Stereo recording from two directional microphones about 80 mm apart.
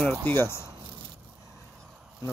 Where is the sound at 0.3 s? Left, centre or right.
Left.